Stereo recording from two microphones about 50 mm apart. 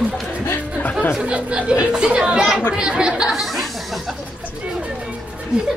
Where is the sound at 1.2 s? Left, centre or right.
Right.